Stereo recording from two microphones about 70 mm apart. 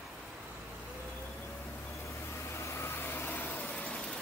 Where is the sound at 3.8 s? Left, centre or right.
Centre.